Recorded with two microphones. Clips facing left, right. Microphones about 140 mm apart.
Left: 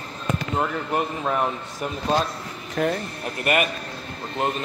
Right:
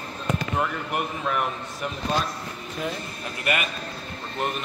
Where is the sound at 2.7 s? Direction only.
55° left (ahead or behind).